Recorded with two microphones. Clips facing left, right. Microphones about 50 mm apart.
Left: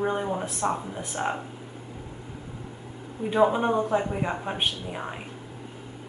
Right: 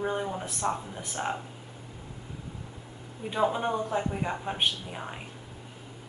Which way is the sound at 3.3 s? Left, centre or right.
Centre.